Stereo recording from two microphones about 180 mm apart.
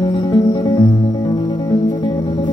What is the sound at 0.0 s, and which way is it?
Music, 25° left (ahead or behind).